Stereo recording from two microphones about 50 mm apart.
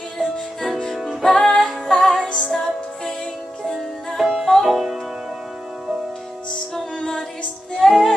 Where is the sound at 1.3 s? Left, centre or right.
Centre.